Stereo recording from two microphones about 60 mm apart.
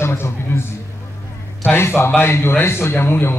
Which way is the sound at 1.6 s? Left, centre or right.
Left.